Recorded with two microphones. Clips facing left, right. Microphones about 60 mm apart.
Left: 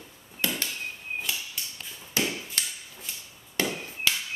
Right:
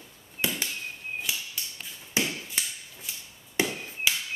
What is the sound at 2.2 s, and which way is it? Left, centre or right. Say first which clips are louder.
Tap: even; right.